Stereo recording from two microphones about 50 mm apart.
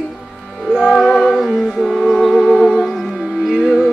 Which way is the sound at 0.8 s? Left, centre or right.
Centre.